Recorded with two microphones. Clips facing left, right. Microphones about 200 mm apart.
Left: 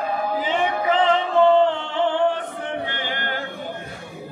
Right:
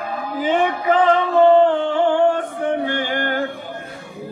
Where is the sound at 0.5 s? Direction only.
50° right (ahead or behind).